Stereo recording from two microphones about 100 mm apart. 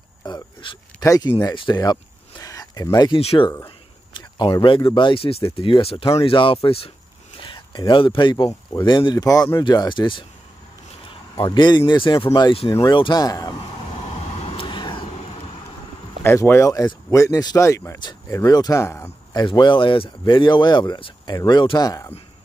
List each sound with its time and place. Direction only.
0.3 s a sound: 55° left (ahead or behind)
1.0 s speech: 35° left (ahead or behind)
1.4 s speech: 50° left (ahead or behind)
1.8 s a sound: 40° left (ahead or behind)
3.2 s speech: 85° left
4.4 s speech: 50° left (ahead or behind); by 6.9 s 70° left (ahead or behind)
7.4 s speech: 55° left (ahead or behind)
11.3 s speech: 55° left (ahead or behind)
12.5 s speech: 65° left (ahead or behind)
13.2 s speech: 40° left (ahead or behind)
14.0 s vehicle: 90° left; by 15.0 s 55° left (ahead or behind)
15.1 s vehicle: 80° left
16.3 s speech: 25° left (ahead or behind)
19.3 s speech: 45° left (ahead or behind)